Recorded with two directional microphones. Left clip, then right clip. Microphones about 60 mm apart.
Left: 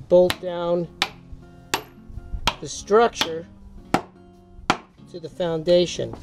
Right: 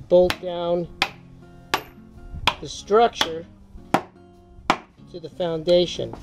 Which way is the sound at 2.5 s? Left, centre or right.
Left.